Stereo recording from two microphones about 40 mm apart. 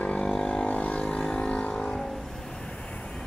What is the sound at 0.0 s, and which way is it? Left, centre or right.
Vehicle, left.